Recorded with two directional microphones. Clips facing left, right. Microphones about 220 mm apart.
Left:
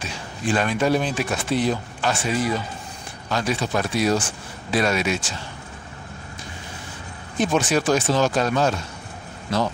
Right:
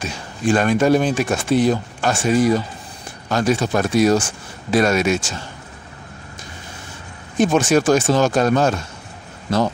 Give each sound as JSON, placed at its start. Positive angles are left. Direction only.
{"t": 0.0, "sound": "speech", "side_deg": -45}
{"t": 7.3, "sound": "speech", "side_deg": -45}